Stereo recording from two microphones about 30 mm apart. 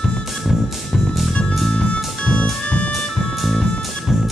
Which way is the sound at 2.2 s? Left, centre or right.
Left.